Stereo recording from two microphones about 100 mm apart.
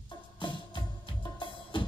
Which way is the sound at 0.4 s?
55° left (ahead or behind).